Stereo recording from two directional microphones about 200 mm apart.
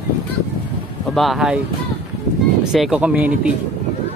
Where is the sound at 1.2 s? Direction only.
Centre (ahead or behind).